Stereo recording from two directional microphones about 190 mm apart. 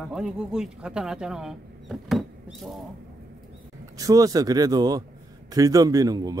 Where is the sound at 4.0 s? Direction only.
20° right (ahead or behind).